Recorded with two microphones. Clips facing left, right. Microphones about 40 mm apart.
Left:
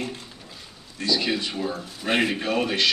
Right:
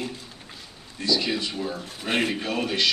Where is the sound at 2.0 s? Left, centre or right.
Left.